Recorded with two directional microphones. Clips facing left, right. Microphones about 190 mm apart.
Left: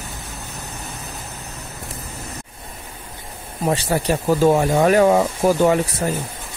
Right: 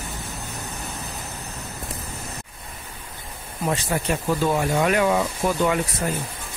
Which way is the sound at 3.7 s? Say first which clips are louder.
Left 5 dB; 35° left (ahead or behind).